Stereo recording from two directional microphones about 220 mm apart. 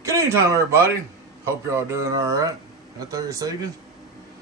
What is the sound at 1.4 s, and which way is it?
Speech, 10° right (ahead or behind).